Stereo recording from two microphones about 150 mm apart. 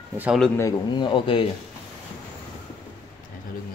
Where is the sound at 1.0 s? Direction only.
35° left (ahead or behind).